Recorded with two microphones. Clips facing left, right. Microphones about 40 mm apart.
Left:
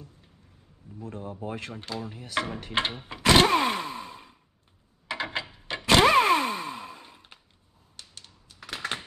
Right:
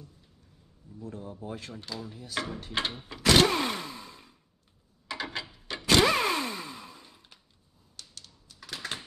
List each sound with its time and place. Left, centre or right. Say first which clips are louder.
0.9 s speech: left 3 dB; left
2.7 s a sound: left 4 dB; left
7.9 s typewriter: left 1 dB; left